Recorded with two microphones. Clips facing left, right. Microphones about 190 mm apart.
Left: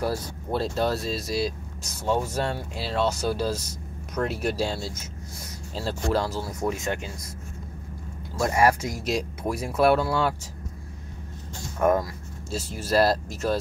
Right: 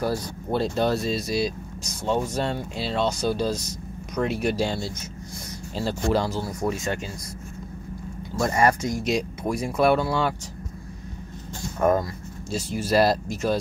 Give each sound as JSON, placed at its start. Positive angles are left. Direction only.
{"t": 0.0, "sound": "speech", "side_deg": 5}
{"t": 8.4, "sound": "speech", "side_deg": 5}
{"t": 11.8, "sound": "speech", "side_deg": 0}